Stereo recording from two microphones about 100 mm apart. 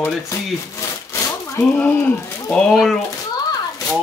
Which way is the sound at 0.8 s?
30° left (ahead or behind).